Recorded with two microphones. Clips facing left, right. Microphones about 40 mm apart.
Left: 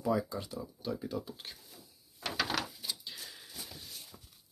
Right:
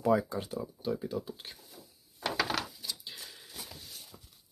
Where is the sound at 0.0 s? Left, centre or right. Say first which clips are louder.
Right 4 dB; right.